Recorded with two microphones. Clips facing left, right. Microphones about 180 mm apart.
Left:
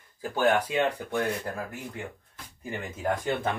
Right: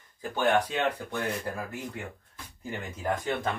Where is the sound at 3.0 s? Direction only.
20° left (ahead or behind).